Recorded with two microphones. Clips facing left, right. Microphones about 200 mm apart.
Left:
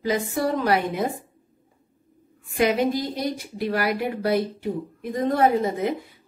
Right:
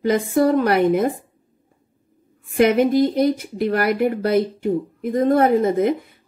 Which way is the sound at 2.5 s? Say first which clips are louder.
Right 6 dB; 50° right (ahead or behind).